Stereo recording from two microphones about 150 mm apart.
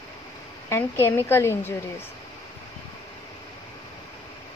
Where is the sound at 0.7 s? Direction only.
20° left (ahead or behind).